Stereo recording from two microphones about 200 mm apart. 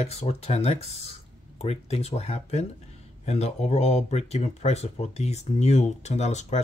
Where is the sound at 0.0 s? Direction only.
30° left (ahead or behind).